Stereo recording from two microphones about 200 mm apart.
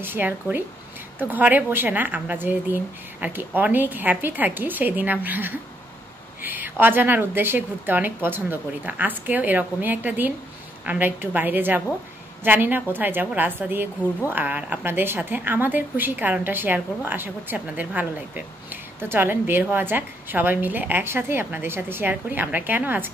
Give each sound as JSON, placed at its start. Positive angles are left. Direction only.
{"t": 0.0, "sound": "a woman's voice", "side_deg": -10}